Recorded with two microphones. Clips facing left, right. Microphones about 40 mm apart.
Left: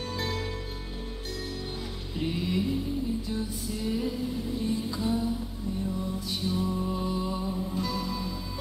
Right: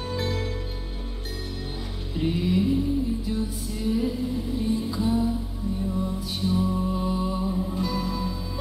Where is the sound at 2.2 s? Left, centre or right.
Centre.